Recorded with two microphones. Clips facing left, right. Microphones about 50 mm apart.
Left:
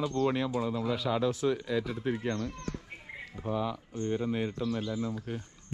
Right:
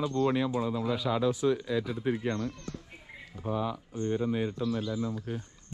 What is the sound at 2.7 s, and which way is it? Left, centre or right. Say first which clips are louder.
Bird: left 3 dB; left.